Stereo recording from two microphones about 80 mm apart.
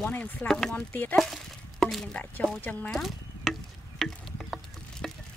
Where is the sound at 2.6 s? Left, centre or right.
Left.